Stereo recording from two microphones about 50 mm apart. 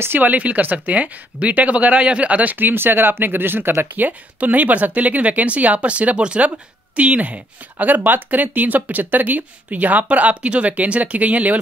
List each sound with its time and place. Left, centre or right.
0.2 s speech: right